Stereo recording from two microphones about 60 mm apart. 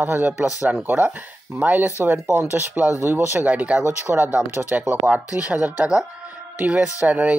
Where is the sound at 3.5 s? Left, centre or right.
Right.